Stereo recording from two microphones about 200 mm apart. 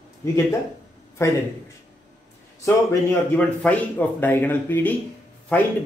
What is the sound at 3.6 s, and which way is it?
Speech, 10° left (ahead or behind).